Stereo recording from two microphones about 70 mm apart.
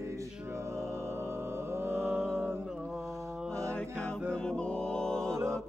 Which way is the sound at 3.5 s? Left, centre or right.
Centre.